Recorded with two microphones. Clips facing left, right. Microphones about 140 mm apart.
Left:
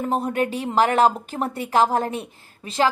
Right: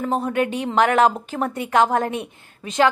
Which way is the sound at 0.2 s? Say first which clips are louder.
Right 2 dB; 35° left (ahead or behind).